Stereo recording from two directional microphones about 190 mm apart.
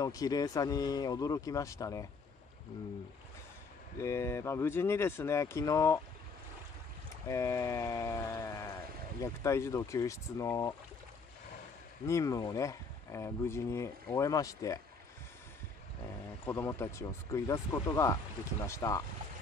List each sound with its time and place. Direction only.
0.0 s speech: 20° left (ahead or behind)
4.0 s speech: 15° left (ahead or behind)
7.2 s speech: 15° left (ahead or behind)
12.1 s speech: 15° left (ahead or behind)
16.4 s speech: 15° left (ahead or behind)